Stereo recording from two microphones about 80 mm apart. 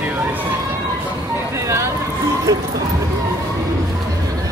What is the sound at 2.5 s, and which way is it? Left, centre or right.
Speech, right.